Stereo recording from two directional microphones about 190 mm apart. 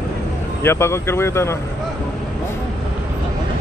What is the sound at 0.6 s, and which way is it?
Speech, 15° left (ahead or behind).